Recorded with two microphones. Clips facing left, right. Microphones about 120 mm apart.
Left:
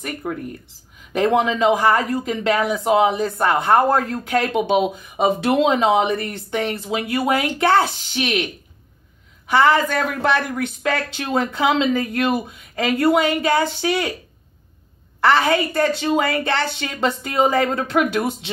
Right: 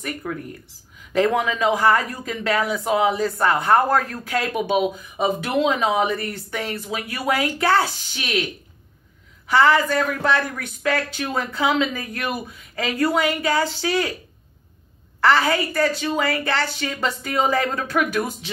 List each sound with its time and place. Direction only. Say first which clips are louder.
0.0 s speech: left 2 dB; 25° left (ahead or behind)
9.5 s a woman's voice: left 1 dB; 20° left (ahead or behind)
15.1 s speech: left 2 dB; 20° left (ahead or behind)